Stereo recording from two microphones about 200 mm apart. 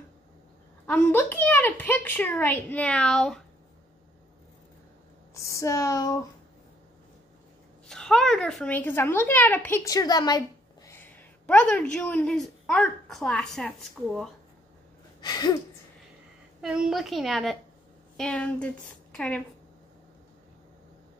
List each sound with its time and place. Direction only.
0.8 s speech: 10° left (ahead or behind)
5.3 s speech: 15° left (ahead or behind)
7.9 s speech: 5° left (ahead or behind); by 10.4 s 20° left (ahead or behind)
10.9 s a woman's voice: 10° left (ahead or behind)
15.1 s a sound: 20° left (ahead or behind)
16.6 s a woman's voice: 5° right (ahead or behind)